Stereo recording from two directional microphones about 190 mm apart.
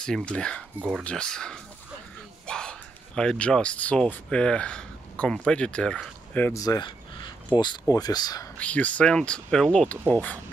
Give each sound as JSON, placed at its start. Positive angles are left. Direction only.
{"t": 0.0, "sound": "speech", "side_deg": 5}
{"t": 0.7, "sound": "speech", "side_deg": -10}
{"t": 1.0, "sound": "speech", "side_deg": 5}
{"t": 8.5, "sound": "speech", "side_deg": 5}